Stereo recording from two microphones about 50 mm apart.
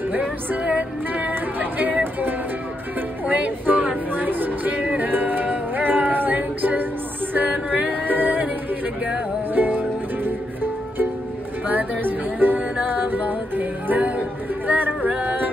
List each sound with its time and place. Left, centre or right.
0.7 s music: right
3.3 s a sound: right
4.7 s music: right
9.5 s music: right
11.6 s music: right